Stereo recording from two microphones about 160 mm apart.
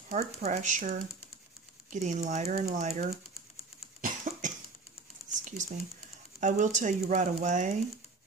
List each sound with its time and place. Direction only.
0.1 s speech: 50° right (ahead or behind)
4.0 s cough: 55° right (ahead or behind)
5.3 s a sound: 50° right (ahead or behind)
6.4 s speech: 50° right (ahead or behind)